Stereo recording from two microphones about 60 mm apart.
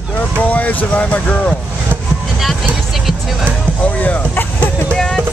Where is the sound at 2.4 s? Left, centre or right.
Centre.